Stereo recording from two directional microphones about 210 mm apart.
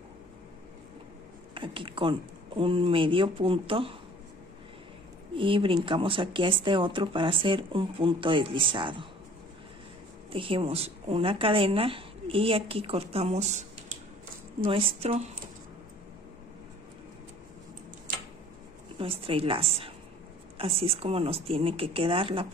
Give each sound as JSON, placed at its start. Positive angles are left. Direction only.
{"t": 1.5, "sound": "a woman's voice", "side_deg": -25}
{"t": 5.3, "sound": "a woman's voice", "side_deg": -25}
{"t": 10.3, "sound": "a woman's voice", "side_deg": -25}
{"t": 14.7, "sound": "a woman's voice", "side_deg": -25}
{"t": 18.9, "sound": "a woman's voice", "side_deg": -25}